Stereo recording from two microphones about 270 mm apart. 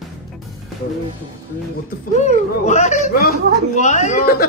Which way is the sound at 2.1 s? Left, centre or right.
Left.